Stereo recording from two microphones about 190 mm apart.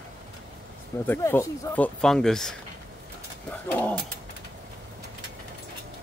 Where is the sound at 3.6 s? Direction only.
10° left (ahead or behind).